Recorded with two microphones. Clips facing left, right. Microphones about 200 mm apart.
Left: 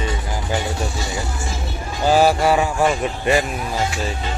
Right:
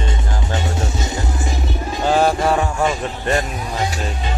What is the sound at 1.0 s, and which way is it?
Music, 20° right (ahead or behind).